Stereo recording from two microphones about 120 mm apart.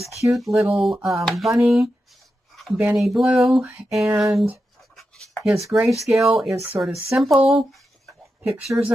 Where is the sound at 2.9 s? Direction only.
Centre (ahead or behind).